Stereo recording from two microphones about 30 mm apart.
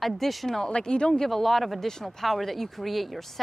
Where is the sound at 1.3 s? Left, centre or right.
Centre.